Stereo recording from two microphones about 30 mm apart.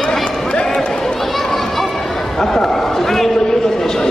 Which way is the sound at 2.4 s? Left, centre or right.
Centre.